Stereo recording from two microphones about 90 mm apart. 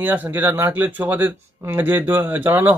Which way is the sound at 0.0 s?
20° right (ahead or behind).